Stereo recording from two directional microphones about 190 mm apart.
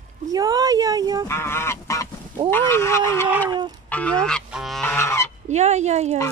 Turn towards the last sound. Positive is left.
turn(degrees=-35)  # may be behind; listen again after turning